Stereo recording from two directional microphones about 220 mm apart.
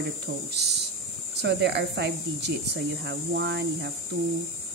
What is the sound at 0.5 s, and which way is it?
Speech, 50° right (ahead or behind).